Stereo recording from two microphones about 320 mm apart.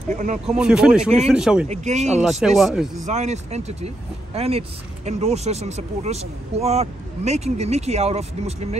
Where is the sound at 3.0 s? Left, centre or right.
Right.